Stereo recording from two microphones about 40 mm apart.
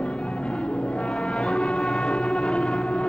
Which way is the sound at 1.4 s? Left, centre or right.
Left.